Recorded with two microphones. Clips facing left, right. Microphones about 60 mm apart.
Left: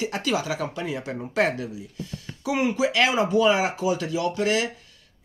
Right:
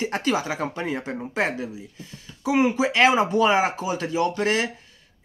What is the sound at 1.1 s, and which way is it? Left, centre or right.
Speech, right.